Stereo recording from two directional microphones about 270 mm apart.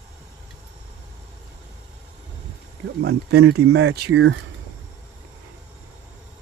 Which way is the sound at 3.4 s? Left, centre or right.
Right.